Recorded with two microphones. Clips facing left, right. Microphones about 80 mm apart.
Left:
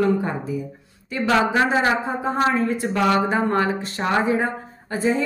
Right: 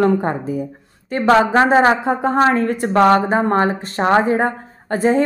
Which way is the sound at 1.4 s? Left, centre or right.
Right.